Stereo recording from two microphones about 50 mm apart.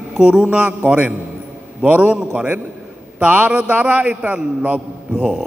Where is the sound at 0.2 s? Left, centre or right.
Right.